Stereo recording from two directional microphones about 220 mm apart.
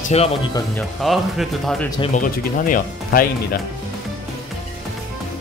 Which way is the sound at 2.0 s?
35° left (ahead or behind).